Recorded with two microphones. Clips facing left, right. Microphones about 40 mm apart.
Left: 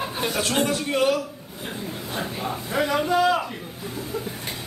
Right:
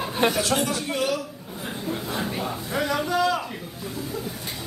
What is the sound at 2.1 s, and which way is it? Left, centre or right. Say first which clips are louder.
A man's voice: left 3 dB; centre.